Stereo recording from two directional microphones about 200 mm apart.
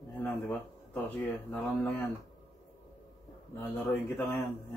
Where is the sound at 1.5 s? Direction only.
10° left (ahead or behind).